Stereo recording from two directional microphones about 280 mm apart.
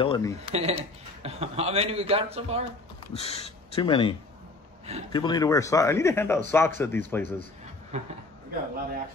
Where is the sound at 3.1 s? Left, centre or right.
Left.